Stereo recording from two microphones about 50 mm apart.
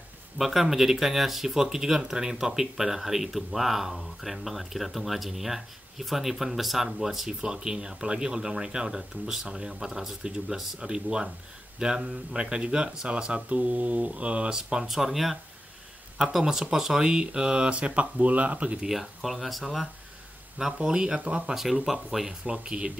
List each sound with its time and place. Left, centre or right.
0.4 s speech: centre; by 14.5 s right
14.5 s speech: centre
16.3 s speech: centre; by 18.8 s right
18.8 s speech: centre
20.7 s speech: centre
21.5 s speech: centre
22.4 s speech: right